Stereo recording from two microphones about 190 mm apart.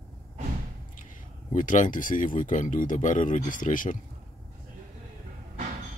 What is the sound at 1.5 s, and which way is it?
Speech, 40° left (ahead or behind).